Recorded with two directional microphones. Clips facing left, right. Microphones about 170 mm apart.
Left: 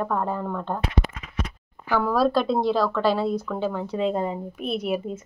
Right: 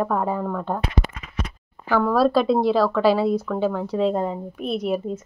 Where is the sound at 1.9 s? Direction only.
Centre (ahead or behind).